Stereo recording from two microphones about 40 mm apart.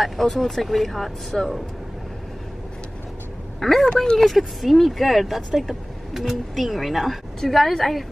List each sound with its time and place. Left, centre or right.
0.0 s speech: centre
3.5 s a woman's voice: centre
4.2 s speech: centre